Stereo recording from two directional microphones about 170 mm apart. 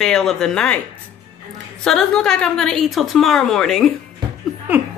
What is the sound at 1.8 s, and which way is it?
A woman's voice, 5° left (ahead or behind).